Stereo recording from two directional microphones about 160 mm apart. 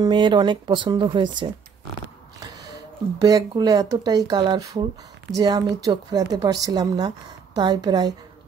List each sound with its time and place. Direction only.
0.0 s speech: 30° right (ahead or behind)
3.2 s speech: 25° right (ahead or behind)